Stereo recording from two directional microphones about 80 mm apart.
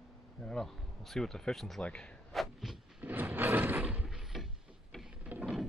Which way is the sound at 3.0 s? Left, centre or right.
Right.